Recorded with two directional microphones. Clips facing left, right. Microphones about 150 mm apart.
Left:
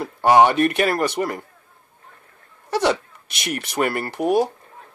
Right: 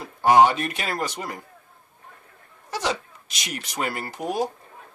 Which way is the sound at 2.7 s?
60° left (ahead or behind).